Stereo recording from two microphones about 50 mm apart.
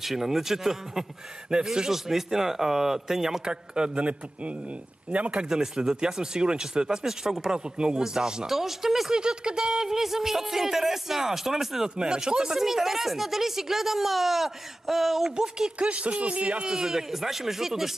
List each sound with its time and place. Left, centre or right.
0.0 s a man's voice: centre; by 5.5 s right
5.5 s speech: centre
9.1 s speech: centre
15.9 s a man's voice: right
16.7 s speech: centre